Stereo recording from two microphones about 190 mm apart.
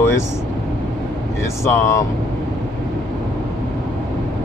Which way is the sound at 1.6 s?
15° left (ahead or behind).